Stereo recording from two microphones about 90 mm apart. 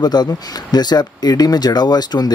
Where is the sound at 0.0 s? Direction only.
50° left (ahead or behind).